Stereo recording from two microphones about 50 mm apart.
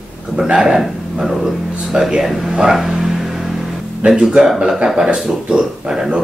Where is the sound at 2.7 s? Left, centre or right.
Centre.